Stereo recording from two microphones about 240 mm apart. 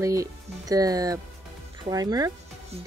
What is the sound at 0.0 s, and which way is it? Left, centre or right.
Speech, centre.